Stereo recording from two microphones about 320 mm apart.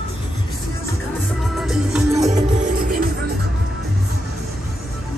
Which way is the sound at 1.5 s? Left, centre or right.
Centre.